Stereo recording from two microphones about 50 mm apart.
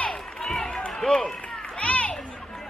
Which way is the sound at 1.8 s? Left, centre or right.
Left.